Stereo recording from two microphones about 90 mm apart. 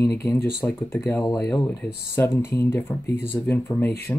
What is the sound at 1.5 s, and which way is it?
Speech, 20° left (ahead or behind).